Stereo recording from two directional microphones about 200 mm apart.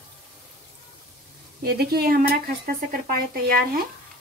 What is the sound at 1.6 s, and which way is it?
Speech, 50° right (ahead or behind).